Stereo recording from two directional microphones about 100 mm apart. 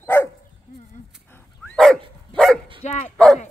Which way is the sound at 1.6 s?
5° left (ahead or behind).